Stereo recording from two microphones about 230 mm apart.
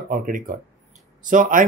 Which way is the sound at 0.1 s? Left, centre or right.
Right.